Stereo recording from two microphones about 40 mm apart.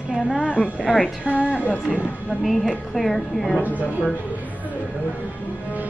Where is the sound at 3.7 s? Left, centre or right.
Right.